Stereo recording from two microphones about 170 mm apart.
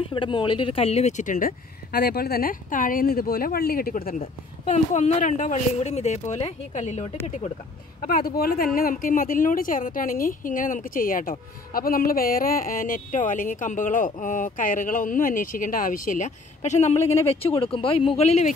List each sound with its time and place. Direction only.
0.0 s speech: 30° left (ahead or behind); by 4.1 s 60° left (ahead or behind)
4.1 s speech: 40° left (ahead or behind)
8.0 s speech: 60° left (ahead or behind); by 18.5 s 40° left (ahead or behind)